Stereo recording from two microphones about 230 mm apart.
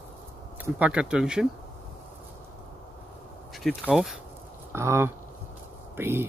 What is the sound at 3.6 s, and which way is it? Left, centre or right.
Speech, centre.